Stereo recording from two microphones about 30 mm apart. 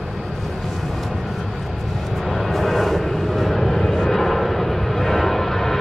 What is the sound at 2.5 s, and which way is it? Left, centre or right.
Vehicle, centre.